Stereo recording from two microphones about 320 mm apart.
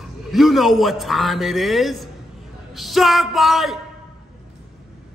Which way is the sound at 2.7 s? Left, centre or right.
Centre.